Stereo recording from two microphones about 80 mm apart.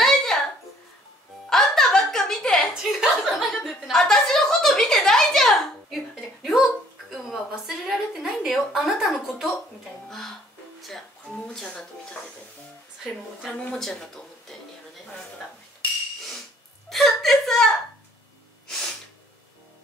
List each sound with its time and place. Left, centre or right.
0.0 s a sound: centre
1.5 s music: centre
2.7 s a sound: centre
10.0 s music: centre
13.5 s speech: centre
13.7 s speech: centre
16.9 s chuckle: centre